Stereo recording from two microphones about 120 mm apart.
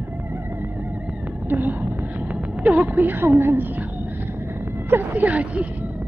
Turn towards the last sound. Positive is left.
turn(degrees=-10)  # may be behind; listen again after turning